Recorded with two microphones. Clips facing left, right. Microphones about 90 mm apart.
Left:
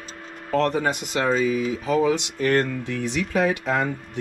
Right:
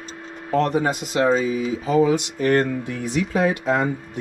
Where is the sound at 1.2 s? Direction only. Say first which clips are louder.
Right 1 dB; 30° right (ahead or behind).